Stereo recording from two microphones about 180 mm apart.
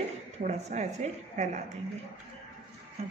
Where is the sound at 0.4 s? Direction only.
40° right (ahead or behind).